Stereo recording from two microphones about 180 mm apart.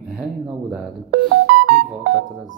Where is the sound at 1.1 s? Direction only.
55° right (ahead or behind).